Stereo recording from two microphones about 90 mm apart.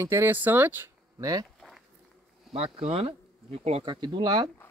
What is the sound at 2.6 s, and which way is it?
Speech, 90° right.